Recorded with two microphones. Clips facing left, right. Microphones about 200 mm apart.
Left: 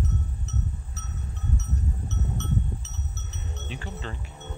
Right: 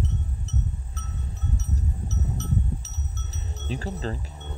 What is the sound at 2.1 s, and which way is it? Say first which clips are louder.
Cowbell: right 1 dB; 35° right (ahead or behind).